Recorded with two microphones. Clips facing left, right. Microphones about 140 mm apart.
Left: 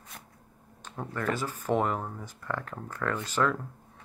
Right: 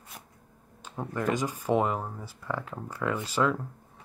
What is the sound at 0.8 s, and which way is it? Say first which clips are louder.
Speech: right 2 dB; 10° right (ahead or behind).